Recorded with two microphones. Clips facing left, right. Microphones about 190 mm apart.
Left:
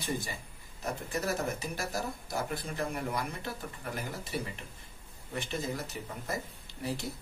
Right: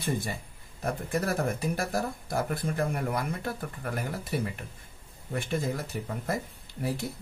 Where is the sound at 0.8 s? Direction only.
55° right (ahead or behind).